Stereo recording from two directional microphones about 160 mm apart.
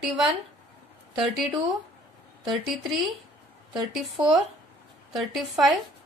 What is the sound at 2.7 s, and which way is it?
A woman's voice, centre (ahead or behind).